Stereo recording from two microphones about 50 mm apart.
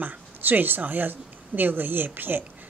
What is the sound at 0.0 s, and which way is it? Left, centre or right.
A woman's voice, right.